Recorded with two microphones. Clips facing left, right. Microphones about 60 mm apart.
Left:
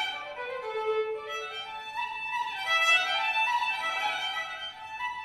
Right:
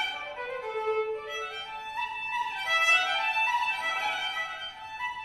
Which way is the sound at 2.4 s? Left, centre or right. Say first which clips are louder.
Even; right.